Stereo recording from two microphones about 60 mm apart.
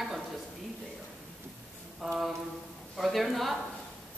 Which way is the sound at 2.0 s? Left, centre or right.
Centre.